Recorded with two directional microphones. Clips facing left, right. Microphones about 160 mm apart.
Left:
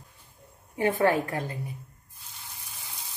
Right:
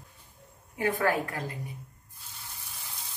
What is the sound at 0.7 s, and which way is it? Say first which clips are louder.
Speech: left 4 dB; 25° left (ahead or behind).